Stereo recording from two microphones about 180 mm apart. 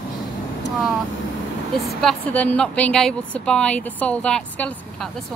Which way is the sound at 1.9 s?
Centre (ahead or behind).